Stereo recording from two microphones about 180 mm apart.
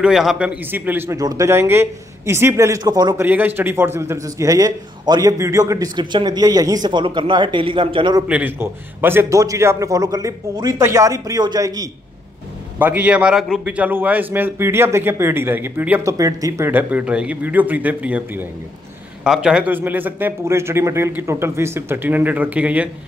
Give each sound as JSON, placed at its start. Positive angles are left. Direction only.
{"t": 0.0, "sound": "a man's voice", "side_deg": 0}
{"t": 3.3, "sound": "a man's voice", "side_deg": -10}
{"t": 8.3, "sound": "a man's voice", "side_deg": -10}
{"t": 12.7, "sound": "a man's voice", "side_deg": -10}